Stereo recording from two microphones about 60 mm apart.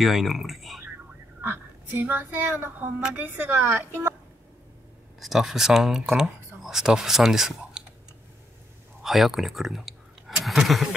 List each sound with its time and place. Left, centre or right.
0.0 s speech: centre
1.4 s a sound: right
2.0 s a woman's voice: right
5.2 s speech: centre
9.0 s speech: centre